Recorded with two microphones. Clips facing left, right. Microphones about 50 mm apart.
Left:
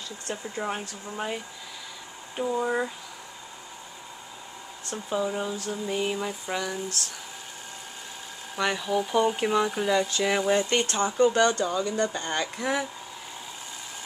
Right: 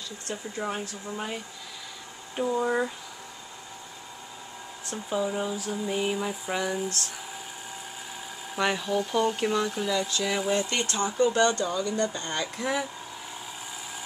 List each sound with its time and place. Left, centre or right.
0.3 s speech: centre
4.9 s speech: centre
8.5 s speech: centre
10.0 s speech: left